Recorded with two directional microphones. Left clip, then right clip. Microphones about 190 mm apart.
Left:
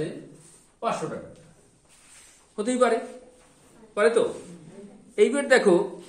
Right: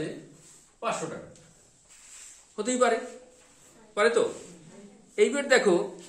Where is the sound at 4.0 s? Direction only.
15° right (ahead or behind).